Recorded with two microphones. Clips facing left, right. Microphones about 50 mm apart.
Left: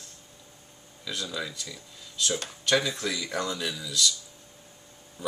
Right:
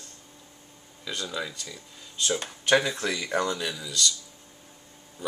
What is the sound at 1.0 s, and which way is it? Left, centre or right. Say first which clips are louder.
Speech: right 1 dB; centre.